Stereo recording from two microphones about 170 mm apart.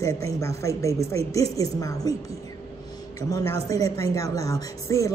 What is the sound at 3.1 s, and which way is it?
Speech, 20° left (ahead or behind).